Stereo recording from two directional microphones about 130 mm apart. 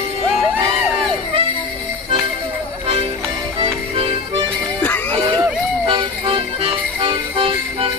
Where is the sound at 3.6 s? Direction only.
45° right (ahead or behind).